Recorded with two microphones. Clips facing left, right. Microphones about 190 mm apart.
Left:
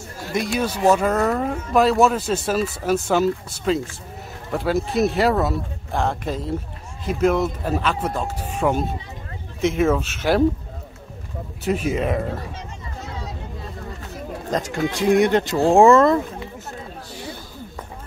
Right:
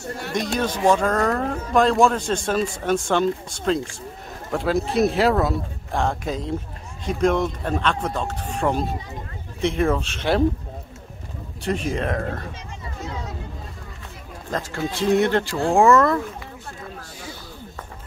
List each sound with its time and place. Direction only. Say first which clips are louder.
0.3 s speech: left 2 dB; 5° left (ahead or behind)
11.6 s speech: left 3 dB; 5° left (ahead or behind)
14.5 s speech: left 3 dB; 15° left (ahead or behind)